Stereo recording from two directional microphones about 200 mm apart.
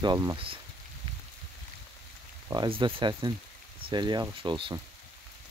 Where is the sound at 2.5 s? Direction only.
20° right (ahead or behind).